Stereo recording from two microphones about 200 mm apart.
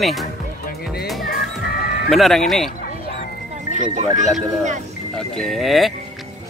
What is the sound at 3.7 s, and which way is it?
Speech, 35° right (ahead or behind).